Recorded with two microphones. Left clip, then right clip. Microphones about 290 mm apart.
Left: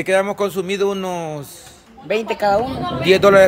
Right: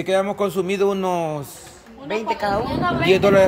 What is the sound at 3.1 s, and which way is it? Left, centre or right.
Speech, centre.